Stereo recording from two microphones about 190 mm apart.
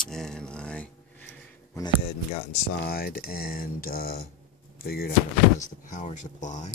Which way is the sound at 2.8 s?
55° left (ahead or behind).